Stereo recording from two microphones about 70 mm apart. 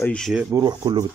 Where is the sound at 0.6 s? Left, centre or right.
Right.